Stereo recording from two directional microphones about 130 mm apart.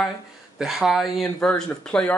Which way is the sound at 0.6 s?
5° right (ahead or behind).